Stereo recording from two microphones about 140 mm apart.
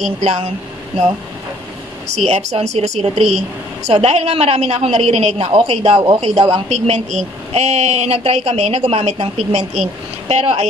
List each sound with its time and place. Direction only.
0.0 s a woman's voice: 55° right (ahead or behind)
2.2 s a woman's voice: 50° right (ahead or behind)